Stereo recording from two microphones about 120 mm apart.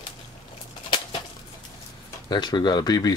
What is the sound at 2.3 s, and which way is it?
Speech, 35° left (ahead or behind).